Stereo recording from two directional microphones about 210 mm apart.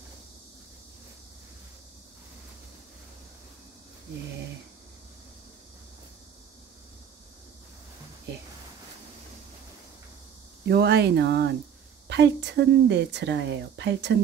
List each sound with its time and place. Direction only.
10.7 s a woman's voice: 50° right (ahead or behind)